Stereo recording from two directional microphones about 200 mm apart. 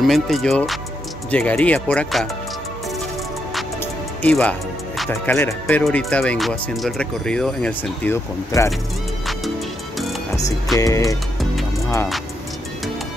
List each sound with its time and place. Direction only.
0.0 s speech: centre (ahead or behind)
4.2 s speech: 5° left (ahead or behind)
10.8 s music: 15° left (ahead or behind)